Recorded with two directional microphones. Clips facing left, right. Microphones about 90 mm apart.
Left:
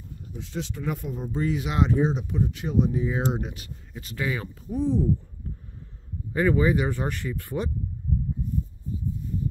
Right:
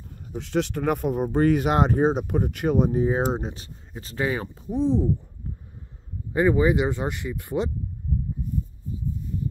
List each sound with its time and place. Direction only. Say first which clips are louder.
0.3 s speech: right 9 dB; 70° right (ahead or behind); by 4.5 s 30° right (ahead or behind)
4.6 s speech: right 2 dB; 20° right (ahead or behind)
6.3 s speech: right 2 dB; 20° right (ahead or behind)